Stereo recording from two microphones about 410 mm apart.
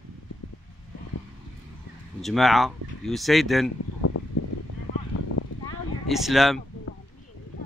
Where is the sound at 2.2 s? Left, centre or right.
Centre.